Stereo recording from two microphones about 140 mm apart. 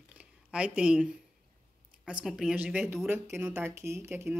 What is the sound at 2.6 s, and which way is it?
Speech, 15° right (ahead or behind).